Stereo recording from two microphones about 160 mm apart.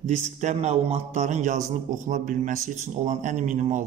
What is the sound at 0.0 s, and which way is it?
Speech, 45° right (ahead or behind).